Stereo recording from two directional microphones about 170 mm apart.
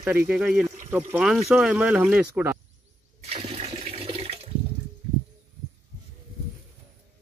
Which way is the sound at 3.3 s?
35° right (ahead or behind).